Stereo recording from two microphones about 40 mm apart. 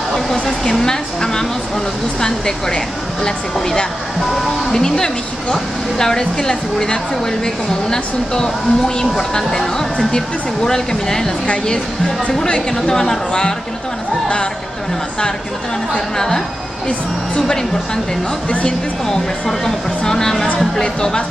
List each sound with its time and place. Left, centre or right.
0.1 s speech: centre
4.3 s speech: centre
4.7 s speech: centre
16.2 s speech: centre
18.5 s speech: left
19.0 s speech: centre